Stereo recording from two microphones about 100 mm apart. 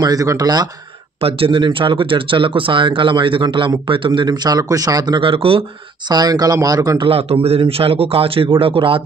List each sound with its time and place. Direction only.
0.0 s speech: 35° right (ahead or behind)
1.2 s speech: 65° right (ahead or behind)
6.0 s speech: 45° right (ahead or behind)
7.0 s a man's voice: 75° right (ahead or behind)